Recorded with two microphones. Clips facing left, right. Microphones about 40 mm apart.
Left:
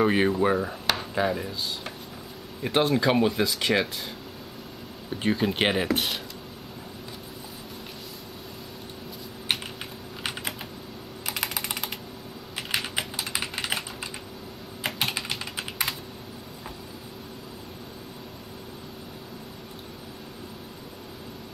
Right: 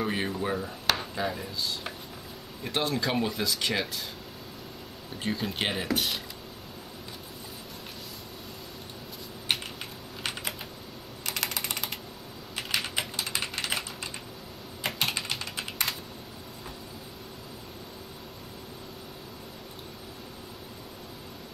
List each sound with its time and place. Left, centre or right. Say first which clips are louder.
0.0 s speech: left 8 dB; left
5.2 s speech: left 6 dB; centre
11.2 s typing: left 1 dB; centre